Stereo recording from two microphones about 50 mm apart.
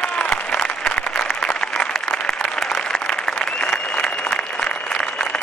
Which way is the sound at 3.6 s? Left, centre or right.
Centre.